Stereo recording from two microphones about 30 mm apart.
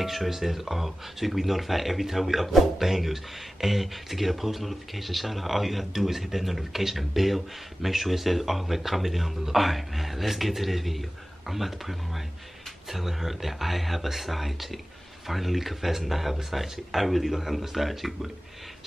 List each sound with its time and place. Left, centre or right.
0.0 s speech: centre